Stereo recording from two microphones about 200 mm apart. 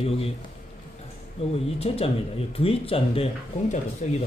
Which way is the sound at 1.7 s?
30° left (ahead or behind).